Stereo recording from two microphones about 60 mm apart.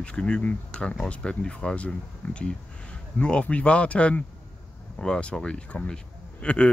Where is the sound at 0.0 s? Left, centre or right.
Centre.